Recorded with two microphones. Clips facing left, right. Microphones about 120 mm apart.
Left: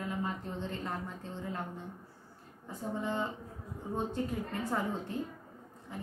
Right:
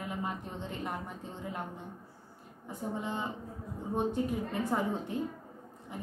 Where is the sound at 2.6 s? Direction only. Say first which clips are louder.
Even; 20° right (ahead or behind).